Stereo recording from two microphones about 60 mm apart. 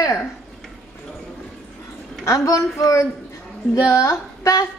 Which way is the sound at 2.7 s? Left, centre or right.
Left.